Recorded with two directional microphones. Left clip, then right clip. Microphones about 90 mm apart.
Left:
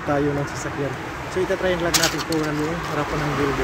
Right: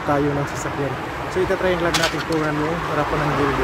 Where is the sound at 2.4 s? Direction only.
20° left (ahead or behind).